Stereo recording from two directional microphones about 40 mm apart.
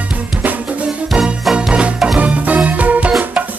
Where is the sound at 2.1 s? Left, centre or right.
Right.